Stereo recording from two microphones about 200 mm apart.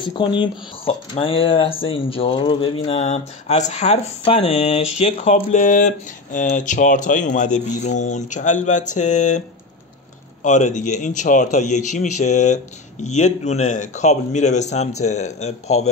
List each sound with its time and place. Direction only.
0.0 s speech: 25° left (ahead or behind)
10.4 s speech: 35° left (ahead or behind)